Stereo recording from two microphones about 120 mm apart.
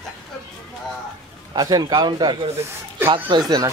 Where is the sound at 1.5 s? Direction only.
35° right (ahead or behind).